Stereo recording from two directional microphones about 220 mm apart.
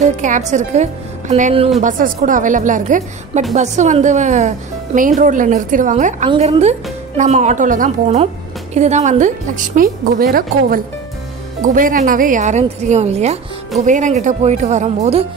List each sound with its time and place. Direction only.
0.0 s speech: 35° right (ahead or behind)